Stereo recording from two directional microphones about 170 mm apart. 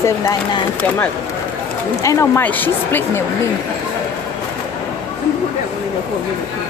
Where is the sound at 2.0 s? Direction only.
15° left (ahead or behind).